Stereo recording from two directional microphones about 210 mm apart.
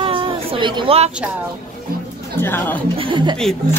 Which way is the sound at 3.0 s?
25° right (ahead or behind).